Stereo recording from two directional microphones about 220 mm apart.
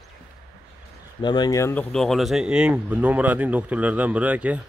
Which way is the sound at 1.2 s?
20° left (ahead or behind).